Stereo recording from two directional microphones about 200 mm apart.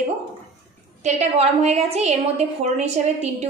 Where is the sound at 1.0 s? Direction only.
35° right (ahead or behind).